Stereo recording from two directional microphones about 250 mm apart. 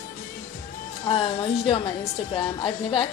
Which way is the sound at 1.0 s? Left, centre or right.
Left.